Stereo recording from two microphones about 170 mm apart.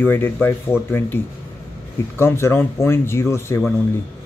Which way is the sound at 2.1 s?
15° left (ahead or behind).